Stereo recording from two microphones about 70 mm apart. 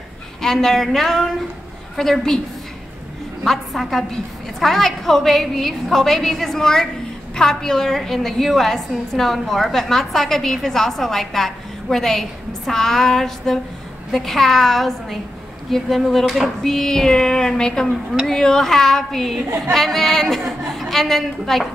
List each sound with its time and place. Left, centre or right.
0.4 s a woman's voice: centre
3.4 s a woman's voice: centre